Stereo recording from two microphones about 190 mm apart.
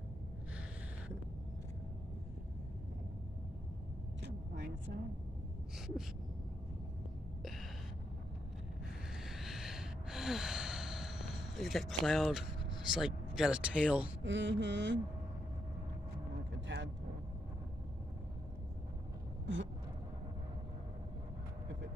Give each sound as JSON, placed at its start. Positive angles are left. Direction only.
{"t": 9.2, "sound": "sigh", "side_deg": 0}
{"t": 12.9, "sound": "speech", "side_deg": -5}
{"t": 14.2, "sound": "mantra", "side_deg": -70}
{"t": 16.6, "sound": "vehicle", "side_deg": -70}
{"t": 19.4, "sound": "a sound", "side_deg": -75}